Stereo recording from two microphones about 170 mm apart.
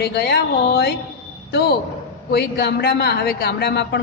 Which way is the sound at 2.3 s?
70° left (ahead or behind).